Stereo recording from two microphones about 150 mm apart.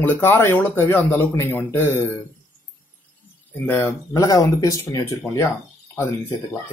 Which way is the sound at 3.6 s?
15° left (ahead or behind).